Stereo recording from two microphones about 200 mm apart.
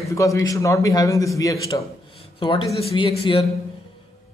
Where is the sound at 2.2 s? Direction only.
25° left (ahead or behind).